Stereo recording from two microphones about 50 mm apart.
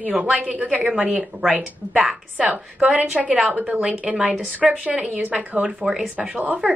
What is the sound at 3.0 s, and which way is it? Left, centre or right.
Speech, right.